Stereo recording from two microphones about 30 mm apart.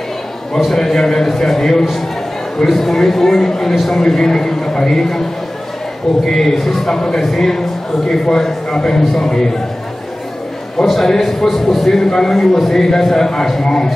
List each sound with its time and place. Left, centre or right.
0.7 s a man's voice: centre
6.2 s a man's voice: centre
6.9 s a man's voice: centre
10.9 s a man's voice: centre